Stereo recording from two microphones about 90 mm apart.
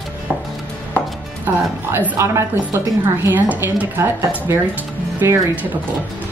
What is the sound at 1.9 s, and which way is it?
A woman's voice, 30° right (ahead or behind).